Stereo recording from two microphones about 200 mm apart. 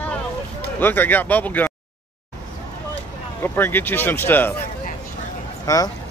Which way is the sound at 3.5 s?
10° left (ahead or behind).